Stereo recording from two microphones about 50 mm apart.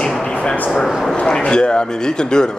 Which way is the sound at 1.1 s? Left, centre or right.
Centre.